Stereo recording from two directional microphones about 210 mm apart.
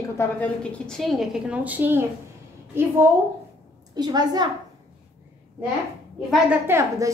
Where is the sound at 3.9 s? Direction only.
20° right (ahead or behind).